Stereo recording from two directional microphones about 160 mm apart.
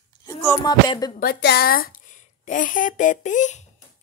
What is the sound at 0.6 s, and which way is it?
Speech, 25° left (ahead or behind).